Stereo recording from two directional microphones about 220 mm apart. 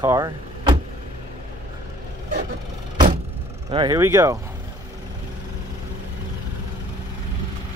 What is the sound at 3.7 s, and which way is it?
Speech, 20° right (ahead or behind).